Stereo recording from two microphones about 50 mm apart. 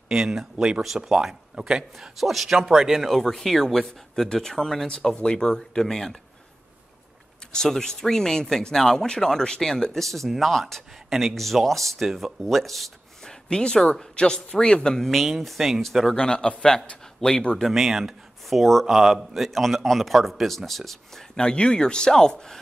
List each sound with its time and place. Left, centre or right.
0.1 s speech: centre
2.1 s a man's voice: centre
3.1 s a man's voice: centre
5.1 s speech: centre
7.5 s a man's voice: centre
13.2 s a sound: centre
14.1 s speech: centre
15.0 s a man's voice: centre
16.2 s speech: centre
17.6 s a man's voice: centre
21.4 s speech: centre